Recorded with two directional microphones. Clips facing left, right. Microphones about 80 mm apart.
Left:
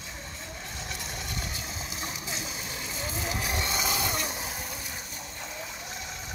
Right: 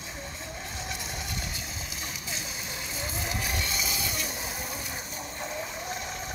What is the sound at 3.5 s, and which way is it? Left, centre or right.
Vehicle, left.